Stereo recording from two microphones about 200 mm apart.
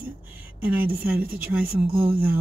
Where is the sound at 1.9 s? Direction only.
25° right (ahead or behind).